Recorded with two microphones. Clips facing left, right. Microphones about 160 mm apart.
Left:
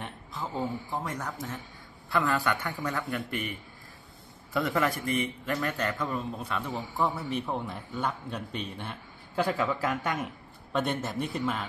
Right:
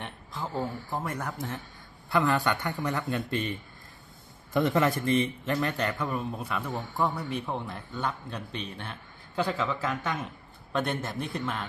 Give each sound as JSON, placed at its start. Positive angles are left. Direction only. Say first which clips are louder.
{"t": 0.0, "sound": "a sound", "louder": "even", "side_deg": 0}
{"t": 0.6, "sound": "a man's voice", "louder": "left 1 dB", "side_deg": 20}
{"t": 0.9, "sound": "a man's voice", "louder": "right 1 dB", "side_deg": -10}
{"t": 4.6, "sound": "a man's voice", "louder": "right 3 dB", "side_deg": -20}
{"t": 6.7, "sound": "a man's voice", "louder": "even", "side_deg": 5}